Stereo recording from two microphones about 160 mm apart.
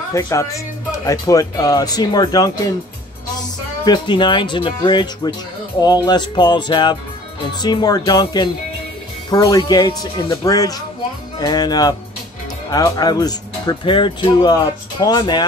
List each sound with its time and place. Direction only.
0.1 s speech: 20° left (ahead or behind)
3.8 s speech: 30° left (ahead or behind)